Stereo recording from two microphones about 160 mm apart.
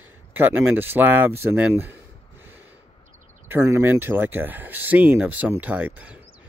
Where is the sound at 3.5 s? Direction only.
15° right (ahead or behind).